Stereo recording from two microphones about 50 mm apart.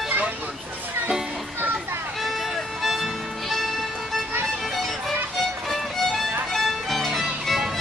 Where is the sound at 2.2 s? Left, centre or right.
Centre.